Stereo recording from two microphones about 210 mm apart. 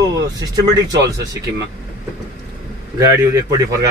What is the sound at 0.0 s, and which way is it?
Speech, 15° right (ahead or behind).